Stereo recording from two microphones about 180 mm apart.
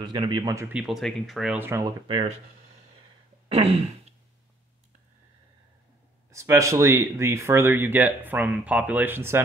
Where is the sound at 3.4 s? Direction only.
35° right (ahead or behind).